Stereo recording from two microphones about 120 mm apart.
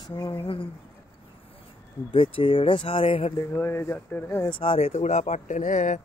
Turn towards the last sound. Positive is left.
turn(degrees=90)